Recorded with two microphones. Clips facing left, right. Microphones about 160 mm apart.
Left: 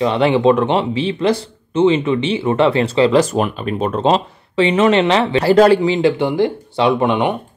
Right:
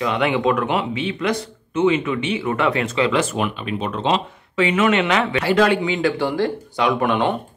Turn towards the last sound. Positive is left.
turn(degrees=20)  # may be behind; listen again after turning